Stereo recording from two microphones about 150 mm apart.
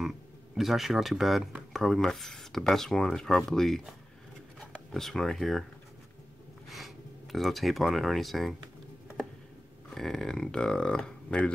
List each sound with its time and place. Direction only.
0.6 s speech: centre (ahead or behind)
7.3 s speech: centre (ahead or behind)
9.8 s speech: 5° left (ahead or behind)